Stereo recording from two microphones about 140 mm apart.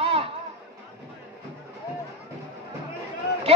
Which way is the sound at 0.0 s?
45° right (ahead or behind).